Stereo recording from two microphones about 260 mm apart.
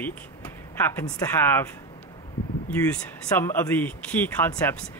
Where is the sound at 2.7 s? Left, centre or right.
Centre.